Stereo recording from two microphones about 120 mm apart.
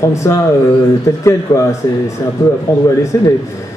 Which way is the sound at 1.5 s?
30° left (ahead or behind).